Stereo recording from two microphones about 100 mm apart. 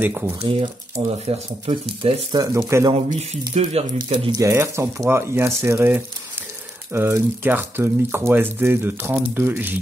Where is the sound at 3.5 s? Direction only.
90° right.